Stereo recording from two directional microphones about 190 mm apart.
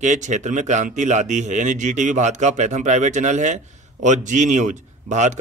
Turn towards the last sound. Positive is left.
turn(degrees=-40)  # may be behind; listen again after turning